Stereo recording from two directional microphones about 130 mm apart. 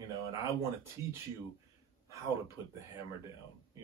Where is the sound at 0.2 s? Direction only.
25° right (ahead or behind).